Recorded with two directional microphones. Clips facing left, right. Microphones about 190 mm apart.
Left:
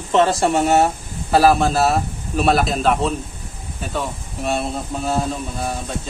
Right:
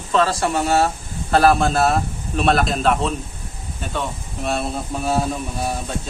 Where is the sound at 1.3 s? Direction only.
5° left (ahead or behind).